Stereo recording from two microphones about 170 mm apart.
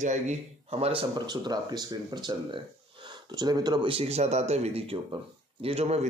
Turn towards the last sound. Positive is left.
turn(degrees=-40)  # may be behind; listen again after turning